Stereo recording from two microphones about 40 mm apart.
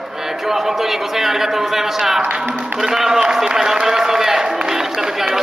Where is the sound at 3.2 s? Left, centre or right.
Centre.